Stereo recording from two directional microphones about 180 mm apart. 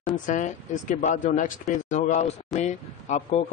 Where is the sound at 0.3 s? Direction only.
45° left (ahead or behind).